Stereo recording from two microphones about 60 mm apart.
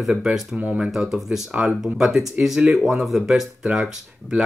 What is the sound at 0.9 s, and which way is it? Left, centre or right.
Speech, centre.